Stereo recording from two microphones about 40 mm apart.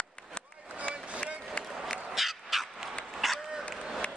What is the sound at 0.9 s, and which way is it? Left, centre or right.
Vehicle, right.